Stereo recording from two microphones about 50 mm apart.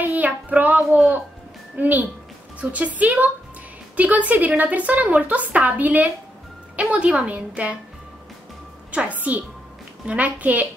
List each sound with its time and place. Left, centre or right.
0.0 s child singing: right
1.8 s a woman's voice: right
8.9 s a woman's voice: right